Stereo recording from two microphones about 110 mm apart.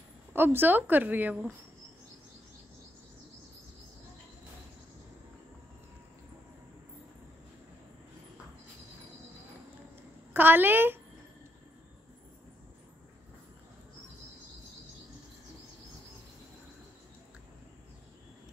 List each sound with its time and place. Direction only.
0.3 s a woman's voice: 20° right (ahead or behind)
10.3 s a woman's voice: 20° right (ahead or behind)